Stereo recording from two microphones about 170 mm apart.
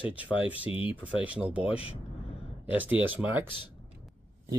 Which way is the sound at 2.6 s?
10° right (ahead or behind).